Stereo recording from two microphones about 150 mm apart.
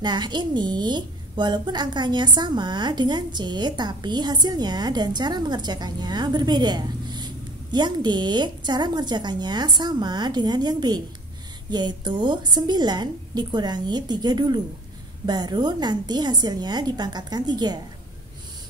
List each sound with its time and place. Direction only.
0.0 s a woman's voice: 30° right (ahead or behind)